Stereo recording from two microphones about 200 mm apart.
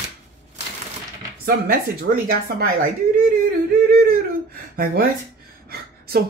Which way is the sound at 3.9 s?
50° right (ahead or behind).